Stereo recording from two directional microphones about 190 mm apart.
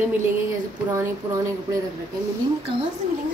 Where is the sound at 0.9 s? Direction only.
15° right (ahead or behind).